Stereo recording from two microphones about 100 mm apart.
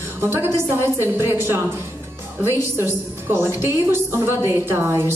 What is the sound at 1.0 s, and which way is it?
Speech, 25° right (ahead or behind).